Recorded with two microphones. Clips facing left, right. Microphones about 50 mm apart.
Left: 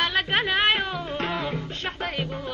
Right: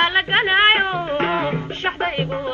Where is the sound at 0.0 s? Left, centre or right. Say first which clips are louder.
Right 6 dB; right.